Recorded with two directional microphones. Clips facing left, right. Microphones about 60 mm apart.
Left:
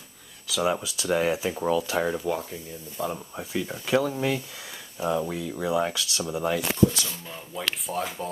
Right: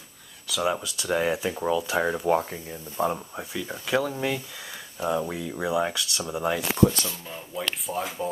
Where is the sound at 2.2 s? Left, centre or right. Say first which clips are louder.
Right 5 dB; right.